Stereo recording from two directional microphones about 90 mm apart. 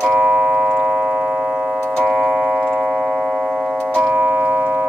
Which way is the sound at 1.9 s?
Centre (ahead or behind).